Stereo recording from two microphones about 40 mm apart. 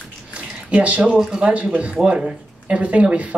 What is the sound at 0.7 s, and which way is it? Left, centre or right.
Speech, right.